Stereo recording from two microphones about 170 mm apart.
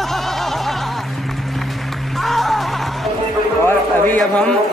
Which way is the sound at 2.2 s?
Centre (ahead or behind).